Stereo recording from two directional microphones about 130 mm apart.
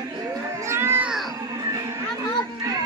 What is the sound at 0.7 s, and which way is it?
Cat, 20° right (ahead or behind).